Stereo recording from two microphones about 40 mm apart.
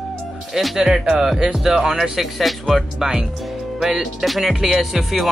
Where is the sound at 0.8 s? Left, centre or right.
Centre.